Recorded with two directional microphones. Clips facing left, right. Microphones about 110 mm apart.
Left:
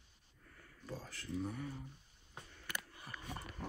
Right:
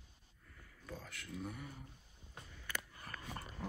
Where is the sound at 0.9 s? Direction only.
30° left (ahead or behind).